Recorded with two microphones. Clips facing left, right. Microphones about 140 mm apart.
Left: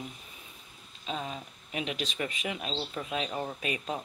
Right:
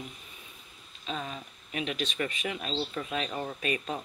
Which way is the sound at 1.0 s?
15° left (ahead or behind).